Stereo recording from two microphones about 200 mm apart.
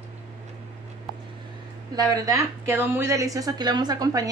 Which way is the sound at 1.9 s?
20° right (ahead or behind).